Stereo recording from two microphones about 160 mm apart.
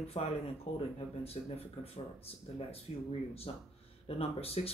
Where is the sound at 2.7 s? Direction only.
35° left (ahead or behind).